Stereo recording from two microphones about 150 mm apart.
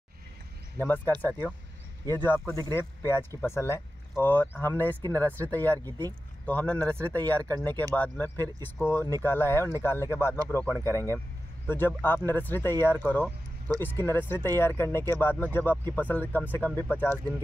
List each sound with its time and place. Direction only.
0.7 s speech: 15° left (ahead or behind)
2.1 s speech: 15° left (ahead or behind)
5.9 s speech: 25° right (ahead or behind)
6.4 s speech: 10° left (ahead or behind)